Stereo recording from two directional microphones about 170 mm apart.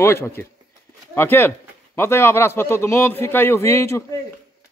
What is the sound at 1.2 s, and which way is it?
A man's voice, 15° left (ahead or behind).